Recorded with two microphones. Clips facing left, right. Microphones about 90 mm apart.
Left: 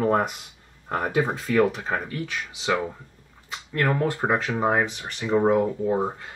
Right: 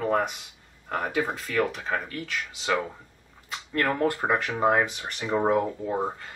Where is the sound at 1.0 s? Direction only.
Centre (ahead or behind).